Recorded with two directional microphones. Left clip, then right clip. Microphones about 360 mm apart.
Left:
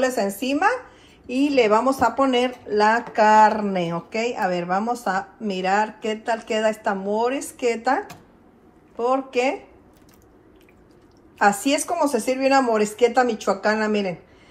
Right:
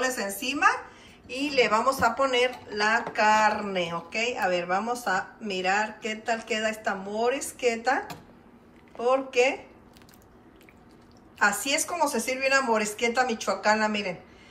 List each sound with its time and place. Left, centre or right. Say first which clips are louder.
0.0 s speech: left 6 dB; centre
11.3 s speech: left 5 dB; centre